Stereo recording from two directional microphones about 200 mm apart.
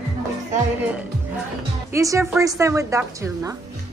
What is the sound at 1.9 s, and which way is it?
Speech, 15° right (ahead or behind).